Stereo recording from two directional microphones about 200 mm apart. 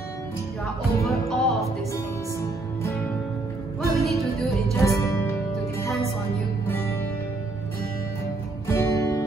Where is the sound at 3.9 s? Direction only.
Centre (ahead or behind).